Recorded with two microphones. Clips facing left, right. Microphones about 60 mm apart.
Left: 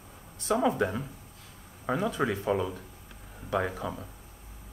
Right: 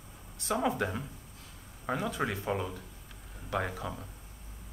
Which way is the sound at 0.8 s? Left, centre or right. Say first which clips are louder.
Left 4 dB; centre.